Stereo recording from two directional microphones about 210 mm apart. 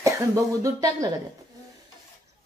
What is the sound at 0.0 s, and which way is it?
Speech, 15° right (ahead or behind).